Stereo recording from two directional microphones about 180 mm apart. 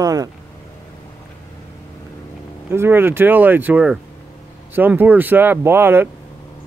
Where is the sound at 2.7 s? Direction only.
10° right (ahead or behind).